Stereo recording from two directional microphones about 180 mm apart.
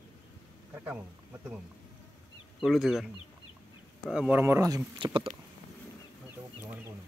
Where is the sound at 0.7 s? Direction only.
10° right (ahead or behind).